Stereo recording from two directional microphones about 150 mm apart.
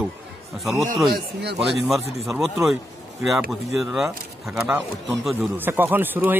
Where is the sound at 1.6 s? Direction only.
Centre (ahead or behind).